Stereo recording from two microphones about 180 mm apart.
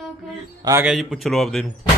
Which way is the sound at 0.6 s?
15° right (ahead or behind).